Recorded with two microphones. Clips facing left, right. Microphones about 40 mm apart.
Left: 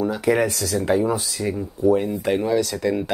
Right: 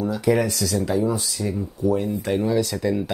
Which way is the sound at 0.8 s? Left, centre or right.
Left.